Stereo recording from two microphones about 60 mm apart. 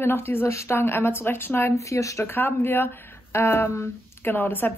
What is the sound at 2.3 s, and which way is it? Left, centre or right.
Speech, left.